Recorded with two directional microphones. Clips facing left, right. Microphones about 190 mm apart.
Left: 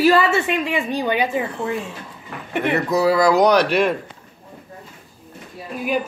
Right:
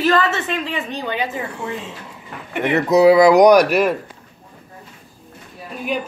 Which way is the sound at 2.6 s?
20° right (ahead or behind).